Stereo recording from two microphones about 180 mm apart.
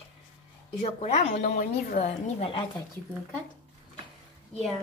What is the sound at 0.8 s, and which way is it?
A woman's voice, 35° left (ahead or behind).